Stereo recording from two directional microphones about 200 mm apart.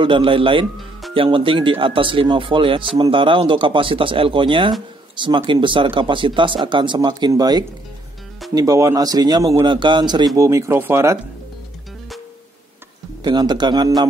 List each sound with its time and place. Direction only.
0.0 s a man's voice: 25° right (ahead or behind)
13.2 s speech: 20° right (ahead or behind)